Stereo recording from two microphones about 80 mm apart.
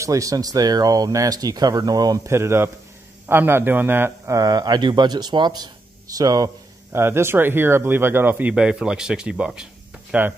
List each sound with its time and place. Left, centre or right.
0.0 s speech: right
2.2 s speech: right
4.3 s speech: right
6.1 s speech: right
6.9 s speech: right
8.5 s speech: centre